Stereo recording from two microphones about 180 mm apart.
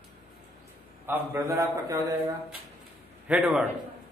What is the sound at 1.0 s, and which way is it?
A man's voice, 15° right (ahead or behind).